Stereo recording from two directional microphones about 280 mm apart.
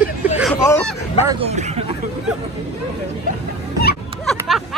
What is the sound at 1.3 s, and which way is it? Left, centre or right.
Speech, right.